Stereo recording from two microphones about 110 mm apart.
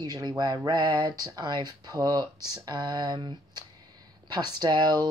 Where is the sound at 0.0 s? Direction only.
40° right (ahead or behind).